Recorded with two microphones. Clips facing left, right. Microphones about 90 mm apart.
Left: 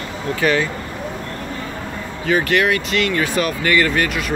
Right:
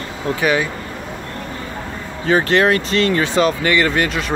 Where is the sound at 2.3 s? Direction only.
30° right (ahead or behind).